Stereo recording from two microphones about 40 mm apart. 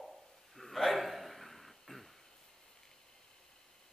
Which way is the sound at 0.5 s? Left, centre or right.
Centre.